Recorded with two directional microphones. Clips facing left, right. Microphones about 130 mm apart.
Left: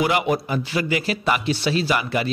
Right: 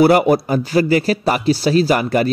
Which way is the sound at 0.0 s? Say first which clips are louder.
Right 9 dB; 40° right (ahead or behind).